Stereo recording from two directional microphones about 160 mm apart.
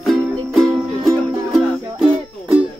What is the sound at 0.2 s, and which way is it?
Music, centre (ahead or behind).